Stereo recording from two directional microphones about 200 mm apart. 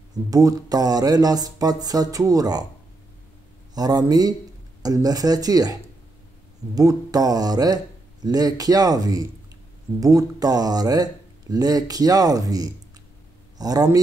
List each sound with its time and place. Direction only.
0.3 s speech: 15° right (ahead or behind)
3.7 s speech: 20° right (ahead or behind)